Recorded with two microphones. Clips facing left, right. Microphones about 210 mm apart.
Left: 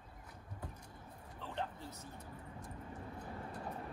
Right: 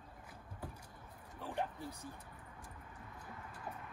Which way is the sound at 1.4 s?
10° right (ahead or behind).